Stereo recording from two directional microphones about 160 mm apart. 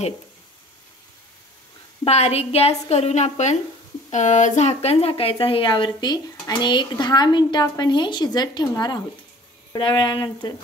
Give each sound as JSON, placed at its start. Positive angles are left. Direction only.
{"t": 2.0, "sound": "a woman's voice", "side_deg": 40}